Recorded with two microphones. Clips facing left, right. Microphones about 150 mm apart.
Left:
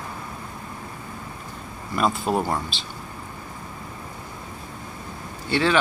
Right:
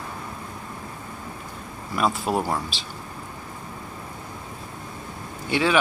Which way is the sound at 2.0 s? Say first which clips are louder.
Left 1 dB; 5° right (ahead or behind).